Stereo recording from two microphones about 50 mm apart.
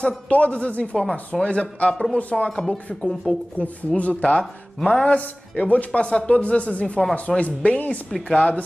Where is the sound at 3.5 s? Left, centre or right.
Left.